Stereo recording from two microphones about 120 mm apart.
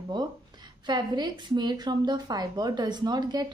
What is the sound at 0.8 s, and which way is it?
A woman's voice, 40° right (ahead or behind).